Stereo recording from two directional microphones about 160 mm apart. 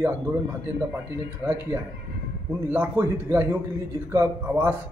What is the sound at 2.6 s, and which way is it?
A man's voice, 10° right (ahead or behind).